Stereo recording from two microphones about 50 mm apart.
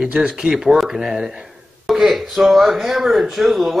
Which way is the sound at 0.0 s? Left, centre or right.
Right.